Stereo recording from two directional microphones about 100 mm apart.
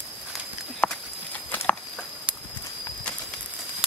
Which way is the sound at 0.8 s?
10° left (ahead or behind).